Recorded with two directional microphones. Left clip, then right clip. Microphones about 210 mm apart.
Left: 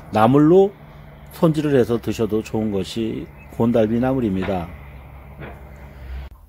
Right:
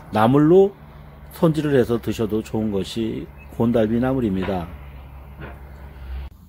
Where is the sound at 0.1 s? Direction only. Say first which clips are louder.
Left 1 dB; 5° left (ahead or behind).